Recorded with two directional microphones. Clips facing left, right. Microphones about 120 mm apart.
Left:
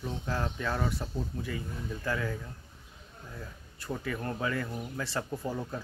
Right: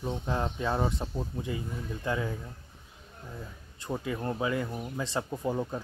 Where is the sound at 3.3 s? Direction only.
20° right (ahead or behind).